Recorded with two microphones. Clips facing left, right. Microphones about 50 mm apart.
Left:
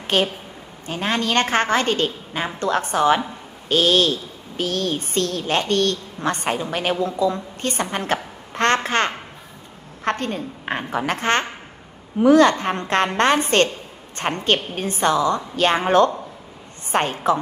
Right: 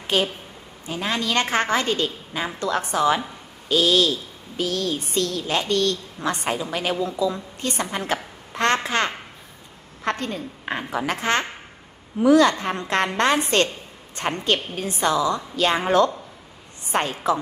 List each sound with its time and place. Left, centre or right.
0.0 s a woman's voice: left